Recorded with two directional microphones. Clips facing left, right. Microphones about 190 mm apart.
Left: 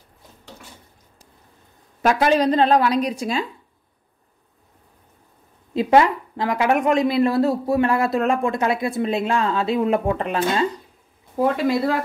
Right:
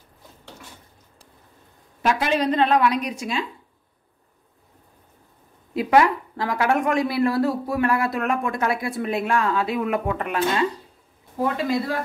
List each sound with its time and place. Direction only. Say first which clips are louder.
2.0 s a woman's voice: left 4 dB; 40° left (ahead or behind)
5.8 s speech: left 2 dB; 25° left (ahead or behind)